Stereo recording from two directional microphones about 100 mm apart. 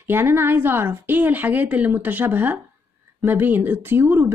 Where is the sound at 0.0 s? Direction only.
20° right (ahead or behind).